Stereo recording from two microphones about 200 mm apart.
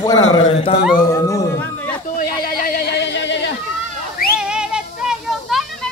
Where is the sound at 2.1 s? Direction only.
45° left (ahead or behind).